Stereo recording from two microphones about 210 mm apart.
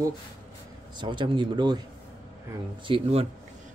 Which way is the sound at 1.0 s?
20° right (ahead or behind).